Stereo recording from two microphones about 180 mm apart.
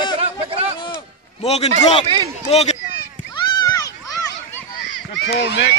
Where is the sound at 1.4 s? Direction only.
35° left (ahead or behind).